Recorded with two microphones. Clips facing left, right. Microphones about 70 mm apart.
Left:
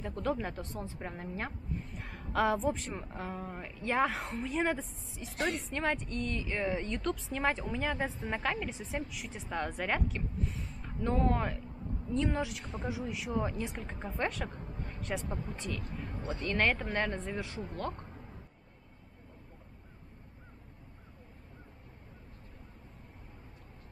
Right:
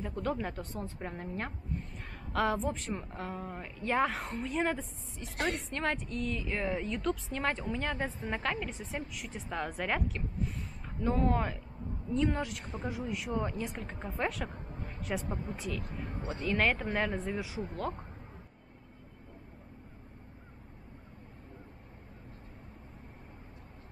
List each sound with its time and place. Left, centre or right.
0.0 s a woman's voice: centre